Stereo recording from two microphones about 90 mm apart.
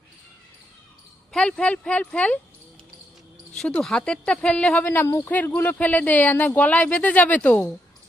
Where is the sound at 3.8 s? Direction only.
10° left (ahead or behind).